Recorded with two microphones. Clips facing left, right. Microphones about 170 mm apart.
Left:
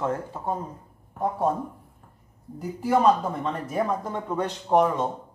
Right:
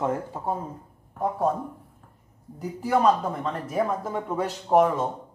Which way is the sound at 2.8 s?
Centre (ahead or behind).